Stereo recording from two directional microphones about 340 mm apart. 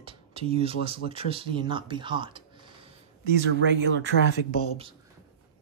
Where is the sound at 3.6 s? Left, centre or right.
Right.